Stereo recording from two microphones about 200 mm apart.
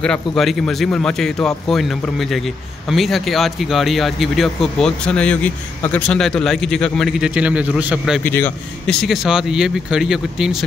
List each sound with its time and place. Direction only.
0.0 s speech: 5° left (ahead or behind)
8.2 s speech: 10° left (ahead or behind)